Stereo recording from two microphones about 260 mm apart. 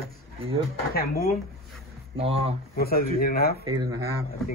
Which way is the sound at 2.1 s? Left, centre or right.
Right.